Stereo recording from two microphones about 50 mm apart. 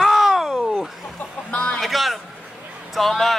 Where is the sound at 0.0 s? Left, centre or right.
Centre.